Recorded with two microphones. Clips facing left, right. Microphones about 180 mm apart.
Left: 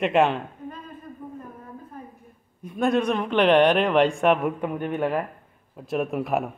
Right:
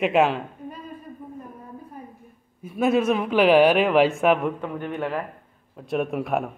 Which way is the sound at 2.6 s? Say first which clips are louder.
Right 2 dB; 5° right (ahead or behind).